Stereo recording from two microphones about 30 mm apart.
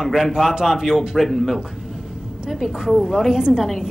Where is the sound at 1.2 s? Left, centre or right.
Centre.